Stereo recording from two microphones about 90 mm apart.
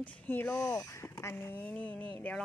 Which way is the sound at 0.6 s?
30° left (ahead or behind).